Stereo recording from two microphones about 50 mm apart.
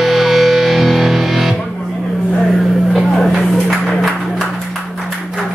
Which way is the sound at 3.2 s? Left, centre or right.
Centre.